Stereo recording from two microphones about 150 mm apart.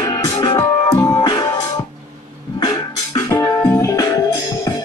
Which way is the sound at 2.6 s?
25° left (ahead or behind).